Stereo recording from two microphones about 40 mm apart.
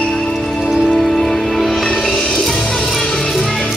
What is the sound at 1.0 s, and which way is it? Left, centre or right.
Music, centre.